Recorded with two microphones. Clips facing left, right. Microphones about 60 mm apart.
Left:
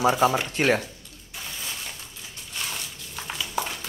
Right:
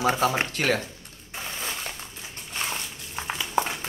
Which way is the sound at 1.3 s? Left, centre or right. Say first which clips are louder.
Right 3 dB; right.